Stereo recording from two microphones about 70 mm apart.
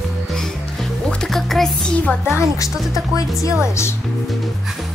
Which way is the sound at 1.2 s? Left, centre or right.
Centre.